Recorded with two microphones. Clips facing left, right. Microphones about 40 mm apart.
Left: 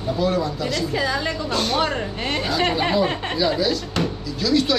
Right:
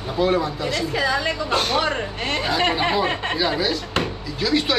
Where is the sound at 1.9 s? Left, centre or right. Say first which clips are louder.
Even; centre.